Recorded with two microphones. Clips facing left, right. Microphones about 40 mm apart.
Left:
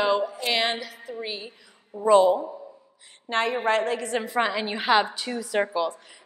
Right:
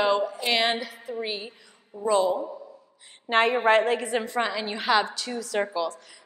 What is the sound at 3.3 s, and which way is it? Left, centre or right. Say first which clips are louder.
Speech: right 3 dB; centre.